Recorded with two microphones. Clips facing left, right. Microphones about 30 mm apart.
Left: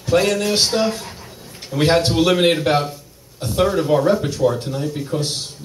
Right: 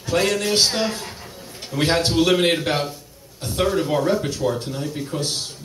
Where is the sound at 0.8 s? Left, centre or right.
Centre.